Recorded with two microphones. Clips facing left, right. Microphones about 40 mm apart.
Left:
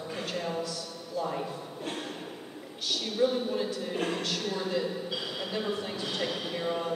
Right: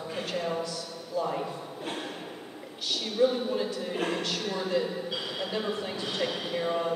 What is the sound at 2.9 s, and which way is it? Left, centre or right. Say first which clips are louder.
Speech: right 2 dB; centre.